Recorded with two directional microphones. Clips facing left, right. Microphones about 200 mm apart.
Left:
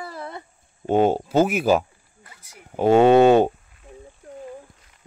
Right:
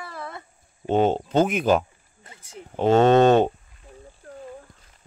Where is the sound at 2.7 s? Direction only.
10° left (ahead or behind).